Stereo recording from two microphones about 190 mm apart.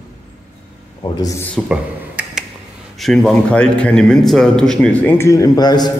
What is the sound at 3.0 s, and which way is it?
A man's voice, 5° left (ahead or behind).